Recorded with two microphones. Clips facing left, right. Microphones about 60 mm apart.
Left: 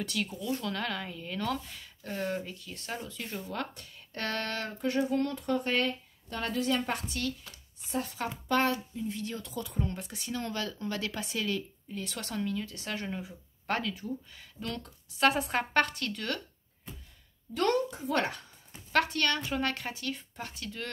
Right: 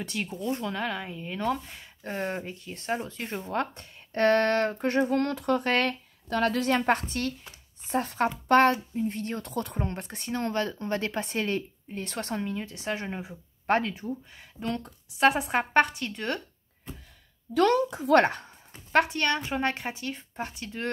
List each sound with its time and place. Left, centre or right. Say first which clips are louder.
0.0 s a woman's voice: right 2 dB; right
17.9 s speech: right 10 dB; right
18.2 s a sound: right 7 dB; right
18.9 s a woman's voice: right 4 dB; right